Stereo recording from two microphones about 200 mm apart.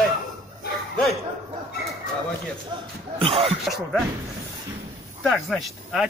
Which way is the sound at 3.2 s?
30° right (ahead or behind).